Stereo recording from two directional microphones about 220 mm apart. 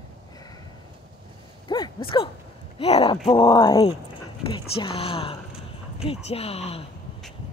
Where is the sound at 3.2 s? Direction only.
25° left (ahead or behind).